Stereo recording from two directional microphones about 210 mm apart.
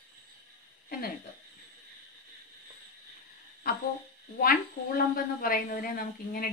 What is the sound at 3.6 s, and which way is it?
A woman's voice, 45° left (ahead or behind).